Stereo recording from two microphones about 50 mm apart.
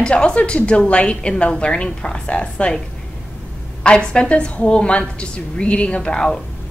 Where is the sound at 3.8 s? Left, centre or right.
Centre.